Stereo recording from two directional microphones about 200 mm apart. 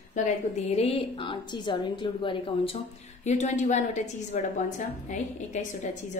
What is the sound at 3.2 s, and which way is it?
A woman's voice, 35° left (ahead or behind).